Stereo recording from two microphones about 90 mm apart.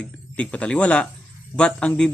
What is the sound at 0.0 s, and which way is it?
Speech, 15° left (ahead or behind).